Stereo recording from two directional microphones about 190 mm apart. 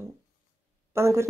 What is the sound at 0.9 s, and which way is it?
Speech, 15° right (ahead or behind).